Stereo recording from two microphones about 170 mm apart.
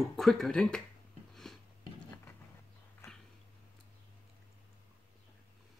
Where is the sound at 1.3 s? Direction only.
Centre (ahead or behind).